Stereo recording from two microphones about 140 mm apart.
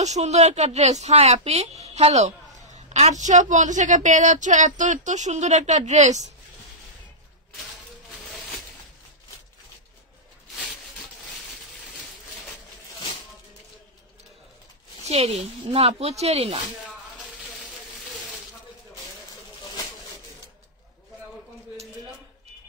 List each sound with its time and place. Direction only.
0.0 s a woman's voice: 55° right (ahead or behind)
15.0 s a woman's voice: 50° right (ahead or behind)